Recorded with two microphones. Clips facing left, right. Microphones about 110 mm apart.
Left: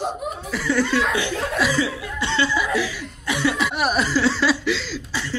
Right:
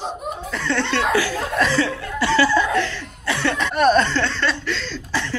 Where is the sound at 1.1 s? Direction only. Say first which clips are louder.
Right 4 dB; 20° left (ahead or behind).